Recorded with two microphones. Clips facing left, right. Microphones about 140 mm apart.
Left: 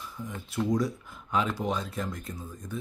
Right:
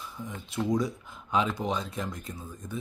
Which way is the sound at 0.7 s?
Centre (ahead or behind).